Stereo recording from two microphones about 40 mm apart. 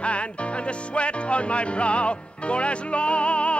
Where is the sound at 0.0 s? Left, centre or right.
Left.